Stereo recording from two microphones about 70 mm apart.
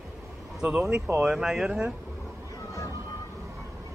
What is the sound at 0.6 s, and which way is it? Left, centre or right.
Speech, centre.